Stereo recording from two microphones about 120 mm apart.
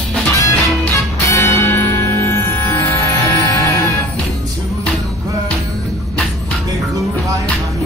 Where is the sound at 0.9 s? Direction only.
25° left (ahead or behind).